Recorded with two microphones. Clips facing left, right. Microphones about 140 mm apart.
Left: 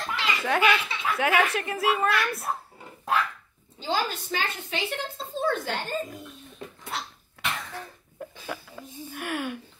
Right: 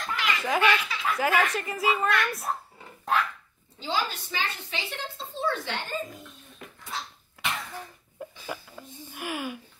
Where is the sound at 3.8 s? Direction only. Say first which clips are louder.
Left 2 dB; 45° left (ahead or behind).